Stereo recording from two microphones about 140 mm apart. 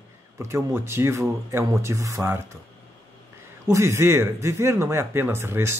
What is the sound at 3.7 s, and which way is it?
Speech, 20° right (ahead or behind).